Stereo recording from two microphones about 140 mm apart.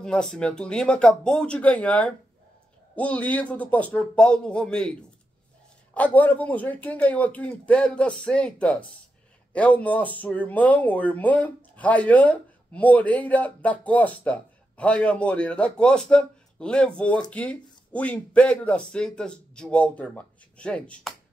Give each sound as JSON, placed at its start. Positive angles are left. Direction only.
{"t": 0.0, "sound": "speech", "side_deg": 5}
{"t": 5.9, "sound": "speech", "side_deg": 10}